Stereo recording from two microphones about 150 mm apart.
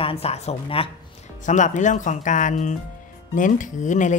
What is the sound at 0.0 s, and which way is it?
Speech, 40° left (ahead or behind).